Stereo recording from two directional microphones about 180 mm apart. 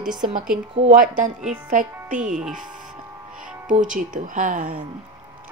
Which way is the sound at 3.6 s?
45° right (ahead or behind).